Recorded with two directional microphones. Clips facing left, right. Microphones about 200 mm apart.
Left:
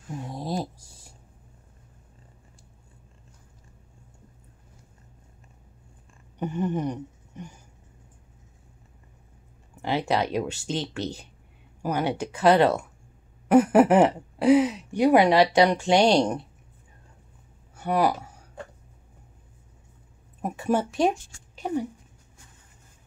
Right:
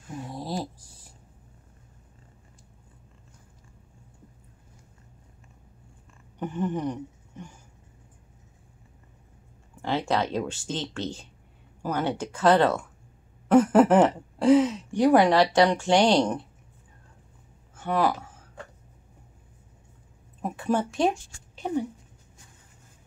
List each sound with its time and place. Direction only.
0.3 s a sound: 20° left (ahead or behind)
6.4 s speech: 15° left (ahead or behind)
9.8 s speech: 15° left (ahead or behind)
17.7 s speech: 15° left (ahead or behind)
20.4 s speech: 10° left (ahead or behind)